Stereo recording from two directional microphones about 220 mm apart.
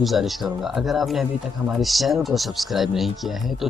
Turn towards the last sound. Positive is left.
turn(degrees=0)  # may be behind; listen again after turning